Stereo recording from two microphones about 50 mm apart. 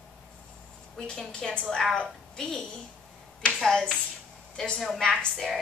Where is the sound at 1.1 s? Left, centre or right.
Centre.